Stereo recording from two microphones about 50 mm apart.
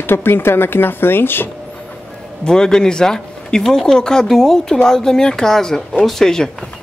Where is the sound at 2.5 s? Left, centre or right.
Centre.